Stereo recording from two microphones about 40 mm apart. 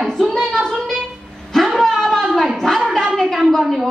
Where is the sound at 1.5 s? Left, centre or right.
Centre.